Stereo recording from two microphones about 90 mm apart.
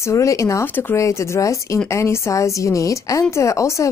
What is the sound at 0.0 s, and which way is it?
Speech, 35° left (ahead or behind).